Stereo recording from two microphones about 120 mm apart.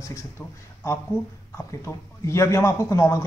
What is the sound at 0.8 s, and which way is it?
Speech, 25° left (ahead or behind).